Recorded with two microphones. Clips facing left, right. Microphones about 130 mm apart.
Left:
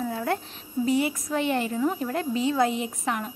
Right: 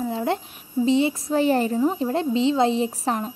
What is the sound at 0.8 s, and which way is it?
A woman's voice, 25° right (ahead or behind).